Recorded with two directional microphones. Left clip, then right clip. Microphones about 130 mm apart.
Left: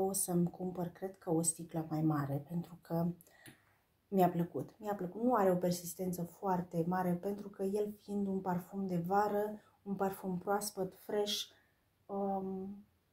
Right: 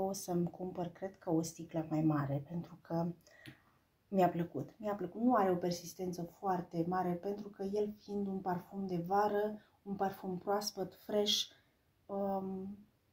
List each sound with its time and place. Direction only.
0.1 s speech: centre (ahead or behind)
4.1 s speech: centre (ahead or behind)
11.1 s speech: centre (ahead or behind)
12.1 s a sound: 10° right (ahead or behind)